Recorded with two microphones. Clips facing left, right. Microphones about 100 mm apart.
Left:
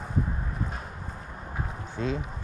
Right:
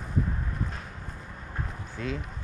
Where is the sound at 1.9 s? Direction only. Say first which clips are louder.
Left 4 dB; 20° left (ahead or behind).